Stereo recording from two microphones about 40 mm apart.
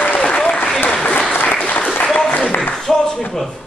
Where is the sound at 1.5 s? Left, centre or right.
Left.